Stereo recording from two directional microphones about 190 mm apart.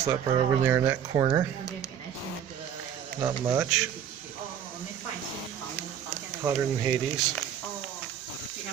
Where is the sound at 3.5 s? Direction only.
10° right (ahead or behind).